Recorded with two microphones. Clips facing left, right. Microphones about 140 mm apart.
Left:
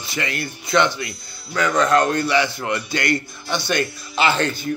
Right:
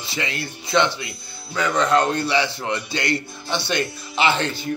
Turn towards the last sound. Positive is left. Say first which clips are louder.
# left 1 dB
turn(degrees=-25)  # may be behind; listen again after turning